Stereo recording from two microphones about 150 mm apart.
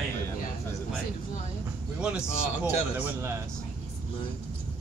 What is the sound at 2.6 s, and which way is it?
Speech, 10° right (ahead or behind).